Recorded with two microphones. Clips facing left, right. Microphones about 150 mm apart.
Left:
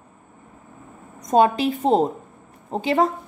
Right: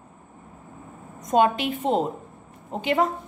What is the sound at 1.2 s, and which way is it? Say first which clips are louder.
A woman's voice: left 3 dB; 35° left (ahead or behind).